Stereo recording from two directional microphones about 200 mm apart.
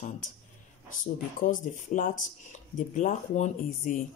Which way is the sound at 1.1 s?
40° left (ahead or behind).